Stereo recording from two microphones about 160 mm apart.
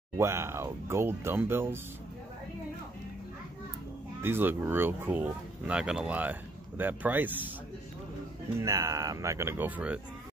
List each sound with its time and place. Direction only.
0.2 s speech: 15° right (ahead or behind)
4.2 s speech: 15° right (ahead or behind)
8.5 s speech: 20° right (ahead or behind)